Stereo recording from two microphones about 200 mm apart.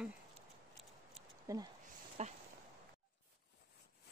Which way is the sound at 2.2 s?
35° right (ahead or behind).